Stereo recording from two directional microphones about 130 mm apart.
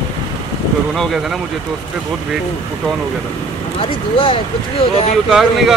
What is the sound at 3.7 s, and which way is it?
Speech, 40° left (ahead or behind).